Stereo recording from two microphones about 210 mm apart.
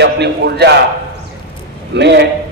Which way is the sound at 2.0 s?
55° right (ahead or behind).